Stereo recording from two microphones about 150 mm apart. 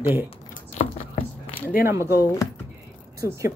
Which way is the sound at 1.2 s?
75° left (ahead or behind).